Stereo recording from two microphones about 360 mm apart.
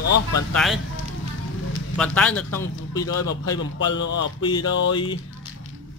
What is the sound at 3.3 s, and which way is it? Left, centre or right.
Speech, left.